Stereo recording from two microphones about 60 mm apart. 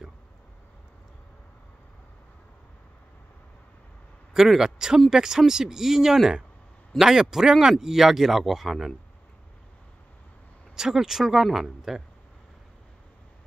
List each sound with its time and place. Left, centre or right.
4.3 s speech: centre
10.8 s speech: centre